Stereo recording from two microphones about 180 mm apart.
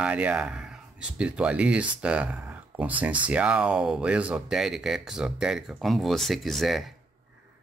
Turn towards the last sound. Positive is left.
turn(degrees=0)  # may be behind; listen again after turning